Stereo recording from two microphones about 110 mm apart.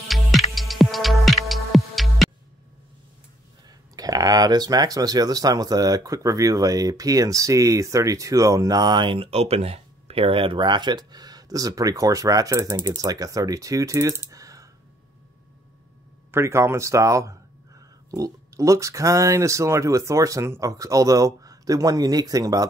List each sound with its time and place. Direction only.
0.1 s music: centre (ahead or behind)
3.9 s speech: 35° right (ahead or behind)
16.3 s speech: 25° right (ahead or behind)